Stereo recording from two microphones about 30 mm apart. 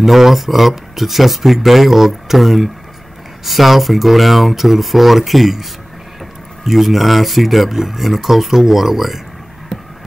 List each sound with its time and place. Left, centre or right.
0.0 s speech: centre